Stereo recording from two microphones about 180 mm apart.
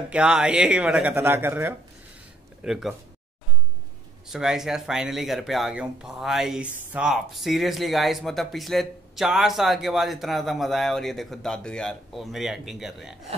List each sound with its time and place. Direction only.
0.1 s speech: 5° right (ahead or behind)
4.3 s speech: 5° right (ahead or behind)